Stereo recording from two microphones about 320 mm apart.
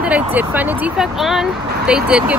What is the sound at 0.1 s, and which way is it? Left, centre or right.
Speech, centre.